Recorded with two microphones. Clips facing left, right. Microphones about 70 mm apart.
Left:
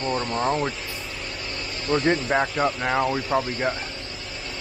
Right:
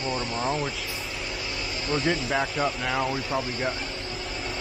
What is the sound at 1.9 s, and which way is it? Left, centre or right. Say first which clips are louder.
Speech: left 5 dB; left.